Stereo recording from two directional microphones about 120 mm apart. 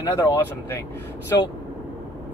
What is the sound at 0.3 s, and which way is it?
Speech, 20° left (ahead or behind).